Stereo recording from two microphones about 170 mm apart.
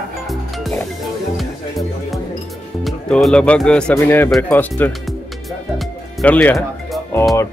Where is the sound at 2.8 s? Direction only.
5° left (ahead or behind).